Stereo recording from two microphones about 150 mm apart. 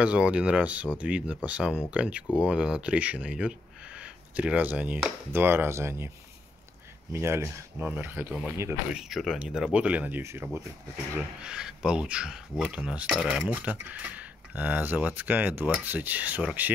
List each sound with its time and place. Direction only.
0.0 s speech: 10° right (ahead or behind)
7.1 s speech: 15° right (ahead or behind)
8.9 s speech: centre (ahead or behind)
11.1 s speech: 5° right (ahead or behind)